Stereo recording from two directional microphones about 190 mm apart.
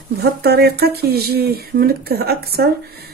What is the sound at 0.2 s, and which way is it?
Speech, 55° right (ahead or behind).